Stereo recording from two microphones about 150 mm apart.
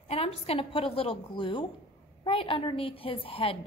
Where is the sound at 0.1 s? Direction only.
40° left (ahead or behind).